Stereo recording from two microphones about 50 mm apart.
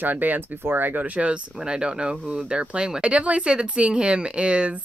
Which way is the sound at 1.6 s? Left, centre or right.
Centre.